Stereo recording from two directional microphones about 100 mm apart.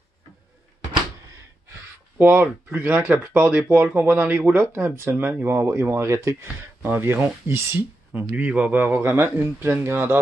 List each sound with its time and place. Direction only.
1.7 s speech: 20° right (ahead or behind)